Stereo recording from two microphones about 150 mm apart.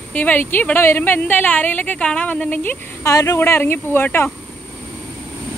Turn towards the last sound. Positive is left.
turn(degrees=15)  # may be behind; listen again after turning